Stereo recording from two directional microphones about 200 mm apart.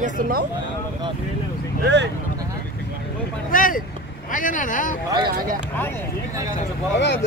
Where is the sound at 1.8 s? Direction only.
60° right (ahead or behind).